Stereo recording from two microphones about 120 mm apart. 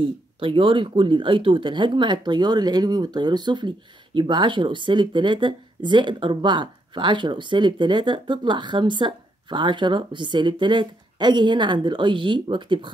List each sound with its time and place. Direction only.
0.0 s speech: 45° right (ahead or behind)